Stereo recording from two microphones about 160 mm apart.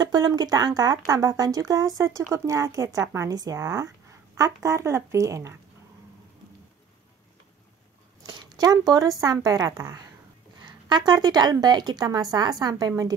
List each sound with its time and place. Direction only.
0.0 s speech: 25° right (ahead or behind)
8.3 s speech: 25° right (ahead or behind)